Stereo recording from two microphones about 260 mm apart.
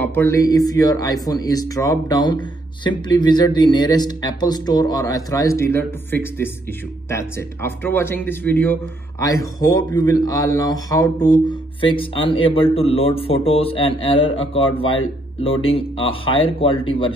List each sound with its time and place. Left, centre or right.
0.0 s speech: centre